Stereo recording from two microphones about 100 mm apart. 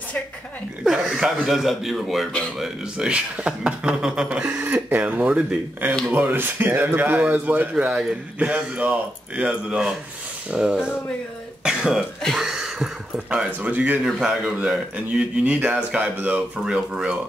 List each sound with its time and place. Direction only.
1.0 s a man's voice: centre (ahead or behind); by 7.7 s 15° right (ahead or behind)
7.7 s a man's voice: 5° right (ahead or behind)
11.6 s throat clearing: 5° right (ahead or behind)
12.2 s a man's voice: centre (ahead or behind)
14.0 s a man's voice: 5° right (ahead or behind)